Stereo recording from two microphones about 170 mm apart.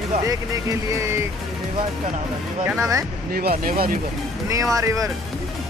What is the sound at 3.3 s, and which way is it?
Speech, 60° right (ahead or behind).